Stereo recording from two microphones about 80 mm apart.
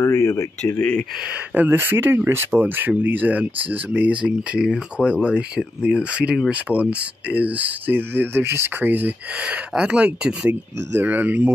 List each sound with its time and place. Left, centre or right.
0.0 s speech: left
0.7 s speech: left
1.5 s speech: right